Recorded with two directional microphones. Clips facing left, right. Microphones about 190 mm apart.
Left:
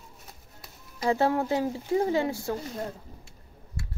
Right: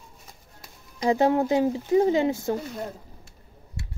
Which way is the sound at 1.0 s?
20° right (ahead or behind).